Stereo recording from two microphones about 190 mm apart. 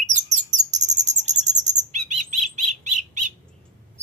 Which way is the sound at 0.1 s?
40° right (ahead or behind).